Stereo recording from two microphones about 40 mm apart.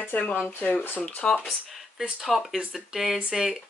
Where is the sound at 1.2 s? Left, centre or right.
Left.